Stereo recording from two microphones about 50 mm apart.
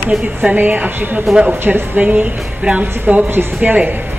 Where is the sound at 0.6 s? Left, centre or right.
Right.